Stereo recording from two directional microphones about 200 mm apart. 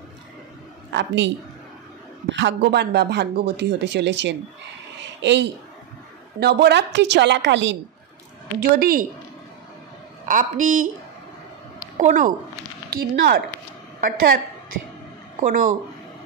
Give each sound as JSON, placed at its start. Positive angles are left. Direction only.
{"t": 0.9, "sound": "a woman's voice", "side_deg": -65}
{"t": 5.0, "sound": "a sound", "side_deg": -60}
{"t": 6.4, "sound": "speech", "side_deg": -60}
{"t": 8.7, "sound": "speech", "side_deg": -45}
{"t": 10.2, "sound": "a woman's voice", "side_deg": -40}
{"t": 12.0, "sound": "a woman's voice", "side_deg": -40}
{"t": 15.4, "sound": "a woman's voice", "side_deg": -40}